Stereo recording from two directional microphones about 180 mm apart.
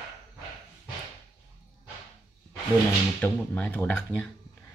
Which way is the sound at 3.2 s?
10° left (ahead or behind).